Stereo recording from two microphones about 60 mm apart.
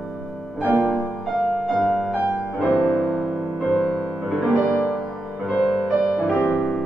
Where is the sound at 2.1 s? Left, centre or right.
Right.